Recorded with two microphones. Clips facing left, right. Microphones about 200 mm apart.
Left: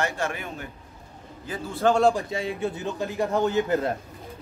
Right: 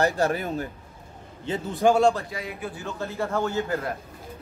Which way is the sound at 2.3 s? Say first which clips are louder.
Left 6 dB; 25° left (ahead or behind).